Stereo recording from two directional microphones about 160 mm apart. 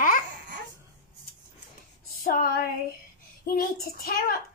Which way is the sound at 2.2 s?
65° left (ahead or behind).